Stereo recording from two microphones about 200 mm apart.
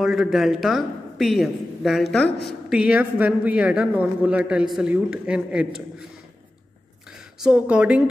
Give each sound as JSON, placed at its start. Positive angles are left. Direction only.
{"t": 0.0, "sound": "a woman's voice", "side_deg": 0}
{"t": 7.1, "sound": "speech", "side_deg": -5}